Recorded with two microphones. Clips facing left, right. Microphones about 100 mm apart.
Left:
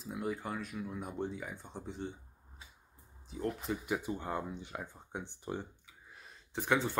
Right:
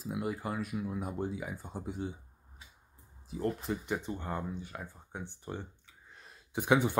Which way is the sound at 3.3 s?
Centre (ahead or behind).